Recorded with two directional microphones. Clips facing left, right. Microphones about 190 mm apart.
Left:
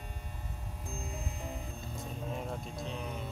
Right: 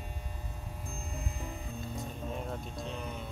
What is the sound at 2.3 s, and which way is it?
Music, centre (ahead or behind).